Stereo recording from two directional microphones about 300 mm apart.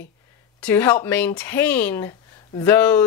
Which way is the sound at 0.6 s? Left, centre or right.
Centre.